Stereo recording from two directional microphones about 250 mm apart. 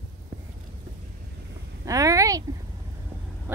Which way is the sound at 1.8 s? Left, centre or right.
Centre.